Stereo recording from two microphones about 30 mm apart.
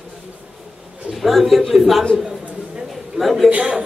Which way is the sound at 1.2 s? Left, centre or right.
Centre.